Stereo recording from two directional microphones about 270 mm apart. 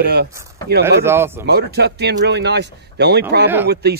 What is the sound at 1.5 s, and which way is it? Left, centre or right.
Speech, right.